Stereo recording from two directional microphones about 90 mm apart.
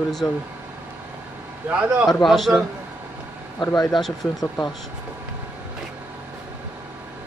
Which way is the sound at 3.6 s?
45° left (ahead or behind).